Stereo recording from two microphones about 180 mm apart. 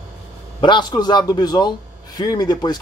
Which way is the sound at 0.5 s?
25° left (ahead or behind).